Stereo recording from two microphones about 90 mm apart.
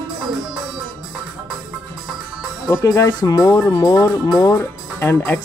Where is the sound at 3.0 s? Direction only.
45° left (ahead or behind).